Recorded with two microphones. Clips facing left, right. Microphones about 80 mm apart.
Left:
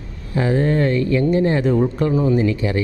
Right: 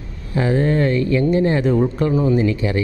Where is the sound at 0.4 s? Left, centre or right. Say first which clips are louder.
Even; centre.